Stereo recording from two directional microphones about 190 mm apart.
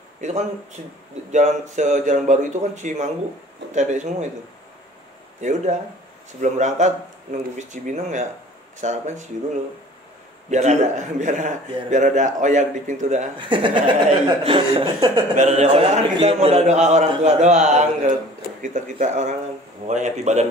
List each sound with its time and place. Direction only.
1.3 s a man's voice: 40° right (ahead or behind)
5.4 s a man's voice: 40° right (ahead or behind)
10.5 s a man's voice: 35° right (ahead or behind)
13.4 s speech: 25° right (ahead or behind)
15.3 s a man's voice: 35° right (ahead or behind)